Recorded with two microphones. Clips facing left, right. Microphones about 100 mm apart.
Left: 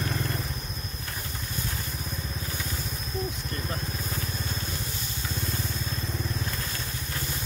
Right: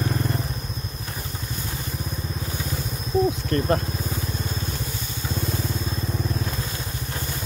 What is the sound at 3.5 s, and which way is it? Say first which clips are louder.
Speech: right 12 dB; 75° right (ahead or behind).